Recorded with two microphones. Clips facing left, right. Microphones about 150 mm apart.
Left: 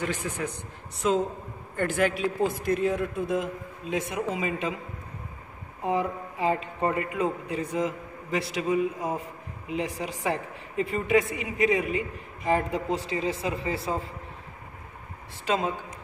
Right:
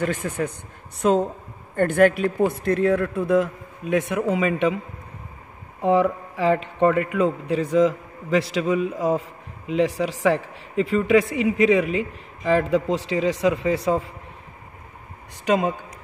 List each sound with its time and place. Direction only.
0.0 s a man's voice: 50° right (ahead or behind); by 4.7 s 70° right (ahead or behind)
5.8 s a man's voice: 75° right (ahead or behind)
15.4 s a man's voice: 65° right (ahead or behind)